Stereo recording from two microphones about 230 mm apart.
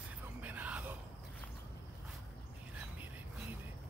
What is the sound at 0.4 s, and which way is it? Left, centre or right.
Whispering, centre.